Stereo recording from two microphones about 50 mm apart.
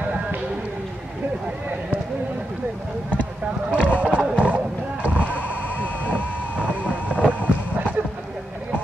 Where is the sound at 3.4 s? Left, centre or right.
Right.